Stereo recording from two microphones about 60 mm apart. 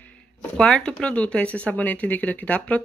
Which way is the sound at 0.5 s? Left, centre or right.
Centre.